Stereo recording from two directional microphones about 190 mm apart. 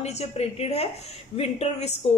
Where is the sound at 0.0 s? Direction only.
35° left (ahead or behind).